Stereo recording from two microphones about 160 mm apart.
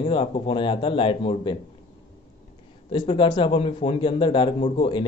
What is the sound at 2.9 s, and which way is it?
A man's voice, 30° left (ahead or behind).